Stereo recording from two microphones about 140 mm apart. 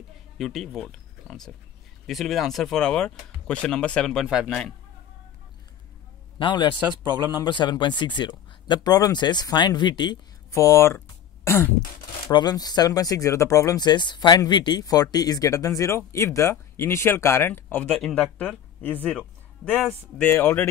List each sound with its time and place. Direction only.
0.4 s speech: centre (ahead or behind)
6.3 s a man's voice: 30° left (ahead or behind)
7.0 s speech: 15° right (ahead or behind)
7.4 s speech: 30° left (ahead or behind)
10.5 s speech: 20° left (ahead or behind)
11.4 s throat clearing: 20° left (ahead or behind)
12.3 s speech: 30° left (ahead or behind); by 18.9 s 10° left (ahead or behind)
19.0 s music: 5° left (ahead or behind)
19.9 s speech: 15° left (ahead or behind)